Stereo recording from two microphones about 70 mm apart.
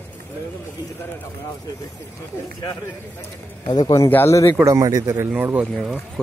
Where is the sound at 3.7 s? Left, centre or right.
Left.